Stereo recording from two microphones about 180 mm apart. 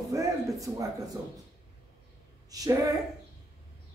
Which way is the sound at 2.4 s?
20° right (ahead or behind).